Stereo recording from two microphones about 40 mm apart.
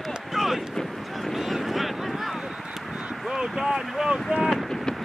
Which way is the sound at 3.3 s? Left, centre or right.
Centre.